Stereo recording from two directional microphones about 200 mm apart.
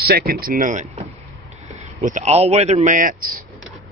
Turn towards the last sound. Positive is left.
turn(degrees=-45)  # may be behind; listen again after turning